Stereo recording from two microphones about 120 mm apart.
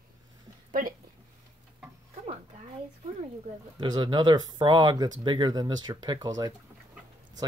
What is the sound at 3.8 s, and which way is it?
Speech, 40° right (ahead or behind).